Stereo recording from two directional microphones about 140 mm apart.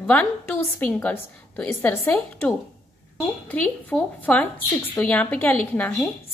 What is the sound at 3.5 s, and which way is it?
A woman's voice, 10° left (ahead or behind).